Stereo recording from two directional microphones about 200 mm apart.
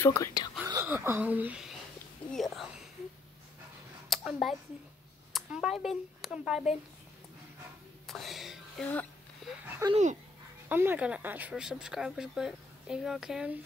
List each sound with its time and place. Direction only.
0.0 s speech: 15° left (ahead or behind)
0.7 s speech: 15° right (ahead or behind)
4.1 s speech: centre (ahead or behind)
8.1 s speech: centre (ahead or behind)
9.4 s a sound: centre (ahead or behind)
9.8 s speech: 15° right (ahead or behind)